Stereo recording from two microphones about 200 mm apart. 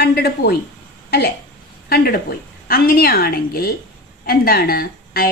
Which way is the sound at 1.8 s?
50° left (ahead or behind).